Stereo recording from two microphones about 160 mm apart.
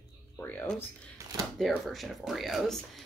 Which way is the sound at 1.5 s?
Centre (ahead or behind).